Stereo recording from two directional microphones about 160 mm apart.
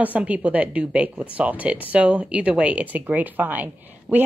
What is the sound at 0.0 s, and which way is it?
A woman's voice, 10° right (ahead or behind).